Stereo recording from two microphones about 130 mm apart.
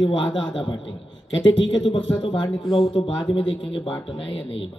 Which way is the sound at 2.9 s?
50° left (ahead or behind).